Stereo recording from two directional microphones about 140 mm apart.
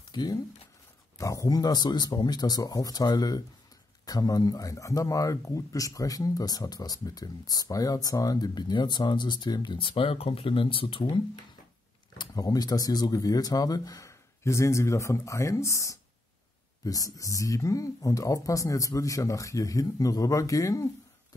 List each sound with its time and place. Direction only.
0.1 s speech: 30° left (ahead or behind)
12.2 s speech: 25° left (ahead or behind)